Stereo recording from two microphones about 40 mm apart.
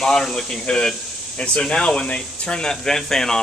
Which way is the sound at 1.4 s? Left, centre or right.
Left.